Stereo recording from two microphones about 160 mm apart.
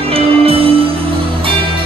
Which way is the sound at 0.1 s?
35° right (ahead or behind).